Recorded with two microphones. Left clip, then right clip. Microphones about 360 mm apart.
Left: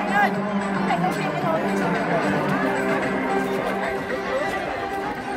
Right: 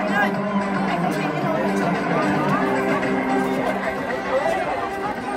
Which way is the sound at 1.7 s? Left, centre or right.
Centre.